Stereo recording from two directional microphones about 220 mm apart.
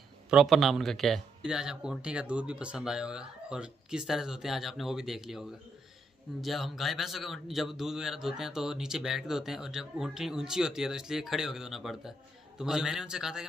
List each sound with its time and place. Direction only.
0.3 s a man's voice: centre (ahead or behind)
6.4 s a man's voice: centre (ahead or behind)